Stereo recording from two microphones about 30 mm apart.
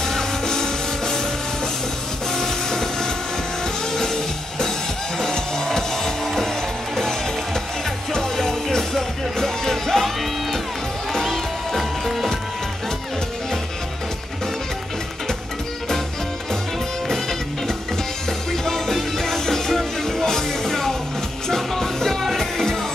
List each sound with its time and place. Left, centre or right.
0.0 s music: centre
2.3 s vehicle: centre
3.9 s music: centre
11.1 s music: centre
11.7 s music: centre
17.1 s music: centre